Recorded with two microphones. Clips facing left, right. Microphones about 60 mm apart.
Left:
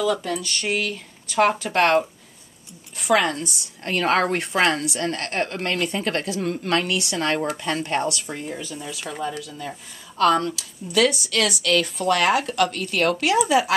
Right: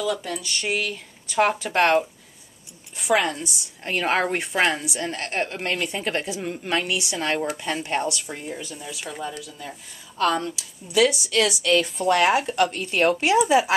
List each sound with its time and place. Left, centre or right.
0.0 s a woman's voice: centre; by 13.7 s right